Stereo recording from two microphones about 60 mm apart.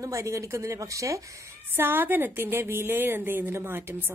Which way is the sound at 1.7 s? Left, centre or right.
Right.